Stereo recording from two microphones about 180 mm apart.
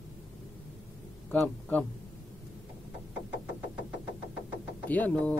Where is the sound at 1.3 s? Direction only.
10° left (ahead or behind).